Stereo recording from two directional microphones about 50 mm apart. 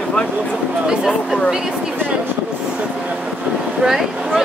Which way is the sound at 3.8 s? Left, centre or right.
Centre.